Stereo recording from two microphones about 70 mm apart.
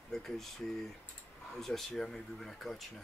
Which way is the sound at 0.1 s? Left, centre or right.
Centre.